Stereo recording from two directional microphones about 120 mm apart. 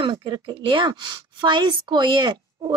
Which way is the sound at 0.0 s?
40° right (ahead or behind).